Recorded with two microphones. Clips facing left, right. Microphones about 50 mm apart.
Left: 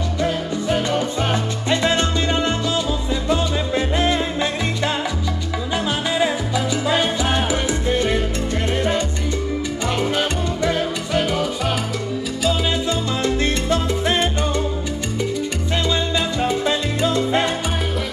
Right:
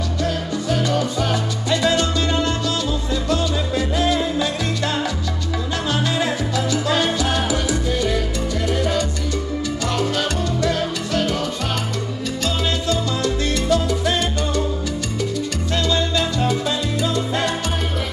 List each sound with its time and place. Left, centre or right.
0.2 s music: left
5.9 s salsa music: centre; by 8.1 s left
9.8 s music: left
12.4 s salsa music: centre
12.8 s salsa music: left
15.7 s salsa music: centre